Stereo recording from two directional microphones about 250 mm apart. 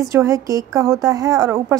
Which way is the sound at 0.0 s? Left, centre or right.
Centre.